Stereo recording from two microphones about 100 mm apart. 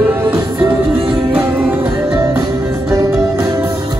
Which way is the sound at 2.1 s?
45° right (ahead or behind).